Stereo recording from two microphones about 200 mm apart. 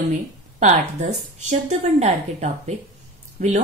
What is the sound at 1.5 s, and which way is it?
Speech, 35° right (ahead or behind).